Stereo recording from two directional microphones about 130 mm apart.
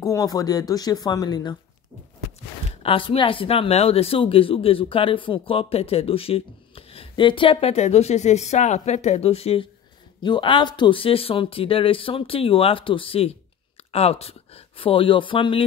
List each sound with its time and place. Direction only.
0.0 s speech: 25° left (ahead or behind)
2.8 s speech: 45° left (ahead or behind)
10.2 s speech: 40° left (ahead or behind)